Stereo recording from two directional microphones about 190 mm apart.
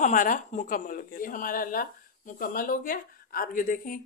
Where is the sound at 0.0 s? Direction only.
45° left (ahead or behind).